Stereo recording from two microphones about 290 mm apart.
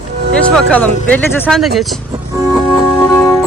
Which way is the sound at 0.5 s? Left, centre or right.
Centre.